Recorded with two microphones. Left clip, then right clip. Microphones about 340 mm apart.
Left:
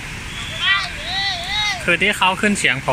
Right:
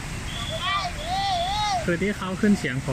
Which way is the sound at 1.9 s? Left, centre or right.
Left.